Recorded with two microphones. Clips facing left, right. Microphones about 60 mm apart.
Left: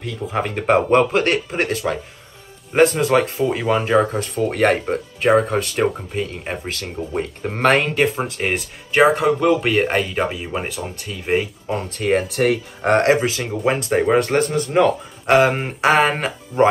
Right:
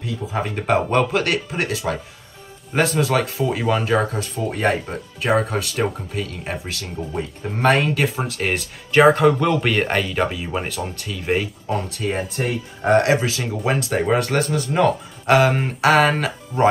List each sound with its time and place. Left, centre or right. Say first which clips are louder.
0.0 s speech: left 2 dB; left
4.1 s speech: left 4 dB; left
4.5 s speech: left 3 dB; left
5.5 s speech: left 3 dB; left
7.2 s speech: left 3 dB; left
8.3 s speech: left 1 dB; left
9.1 s speech: even; centre
11.9 s speech: left 5 dB; left
12.3 s speech: left 7 dB; left
12.8 s speech: left 1 dB; left